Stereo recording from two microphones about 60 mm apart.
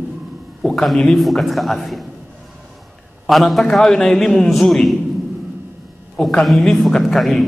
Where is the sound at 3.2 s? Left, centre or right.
Centre.